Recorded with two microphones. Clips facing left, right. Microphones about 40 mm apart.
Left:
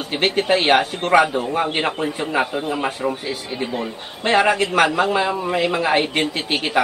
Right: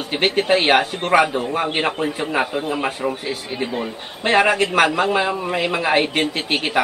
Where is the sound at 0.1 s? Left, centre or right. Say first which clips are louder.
Right 1 dB; centre.